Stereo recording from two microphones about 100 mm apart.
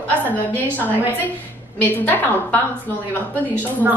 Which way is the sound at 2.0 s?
20° left (ahead or behind).